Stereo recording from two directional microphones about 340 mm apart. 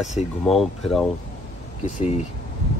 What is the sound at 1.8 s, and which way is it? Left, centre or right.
Speech, left.